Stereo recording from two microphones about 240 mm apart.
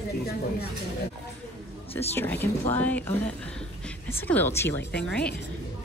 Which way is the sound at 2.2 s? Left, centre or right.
Centre.